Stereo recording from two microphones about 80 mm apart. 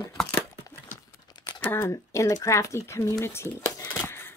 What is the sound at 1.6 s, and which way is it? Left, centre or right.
Speech, left.